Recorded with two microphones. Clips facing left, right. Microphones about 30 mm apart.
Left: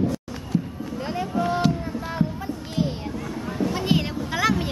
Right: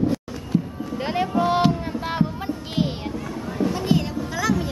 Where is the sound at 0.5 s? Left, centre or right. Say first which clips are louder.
Right 2 dB; centre.